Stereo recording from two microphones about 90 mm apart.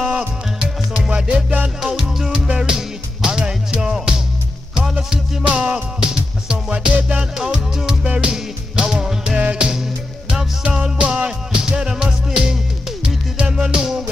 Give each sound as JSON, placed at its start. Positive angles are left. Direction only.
{"t": 0.0, "sound": "music", "side_deg": -15}
{"t": 1.3, "sound": "music", "side_deg": -20}
{"t": 1.8, "sound": "music", "side_deg": -5}